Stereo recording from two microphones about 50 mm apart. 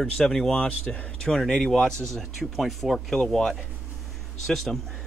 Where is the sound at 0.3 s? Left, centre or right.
Centre.